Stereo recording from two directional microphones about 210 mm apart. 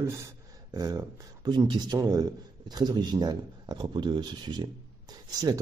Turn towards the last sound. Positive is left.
turn(degrees=-20)  # may be behind; listen again after turning